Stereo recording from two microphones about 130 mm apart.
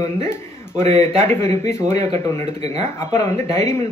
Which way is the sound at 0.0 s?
25° left (ahead or behind).